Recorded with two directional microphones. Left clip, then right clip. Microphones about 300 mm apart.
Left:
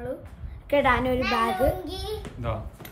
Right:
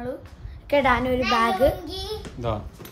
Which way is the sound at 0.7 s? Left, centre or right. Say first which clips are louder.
Right 2 dB; centre.